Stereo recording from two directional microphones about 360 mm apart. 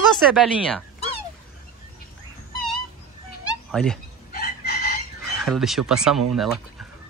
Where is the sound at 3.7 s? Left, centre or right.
Centre.